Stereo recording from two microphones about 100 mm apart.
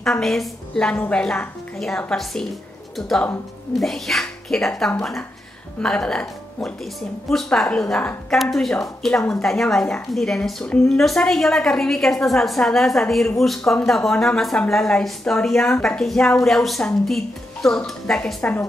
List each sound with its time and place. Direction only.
0.0 s a woman's voice: 5° left (ahead or behind)
3.7 s a woman's voice: centre (ahead or behind)